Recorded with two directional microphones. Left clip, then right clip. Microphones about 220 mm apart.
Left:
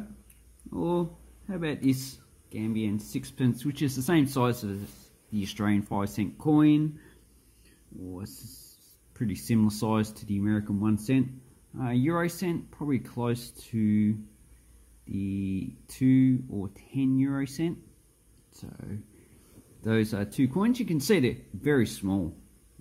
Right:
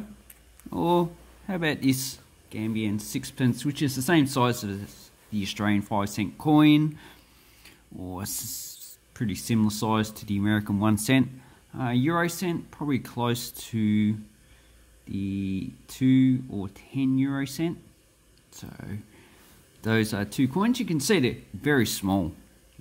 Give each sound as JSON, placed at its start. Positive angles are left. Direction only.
{"t": 0.7, "sound": "a sound", "side_deg": -20}
{"t": 1.5, "sound": "speech", "side_deg": -15}
{"t": 9.1, "sound": "speech", "side_deg": -5}
{"t": 11.7, "sound": "speech", "side_deg": -10}